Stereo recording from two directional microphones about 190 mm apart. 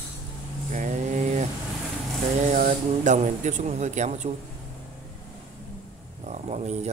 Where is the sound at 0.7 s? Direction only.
40° right (ahead or behind).